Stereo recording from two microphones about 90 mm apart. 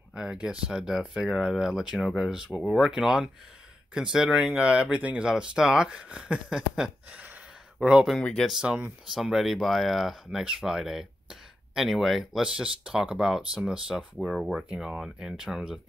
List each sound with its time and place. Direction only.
0.1 s speech: 5° right (ahead or behind)
8.2 s speech: 10° left (ahead or behind)
8.5 s speech: 10° right (ahead or behind)